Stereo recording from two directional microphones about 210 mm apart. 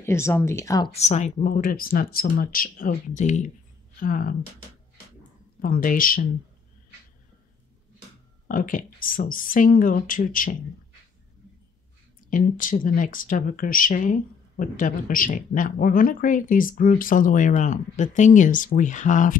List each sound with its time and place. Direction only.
0.0 s speech: 10° left (ahead or behind)
0.9 s speech: 30° left (ahead or behind)
5.6 s speech: 40° left (ahead or behind)
8.5 s speech: 40° left (ahead or behind)
12.3 s speech: 40° left (ahead or behind)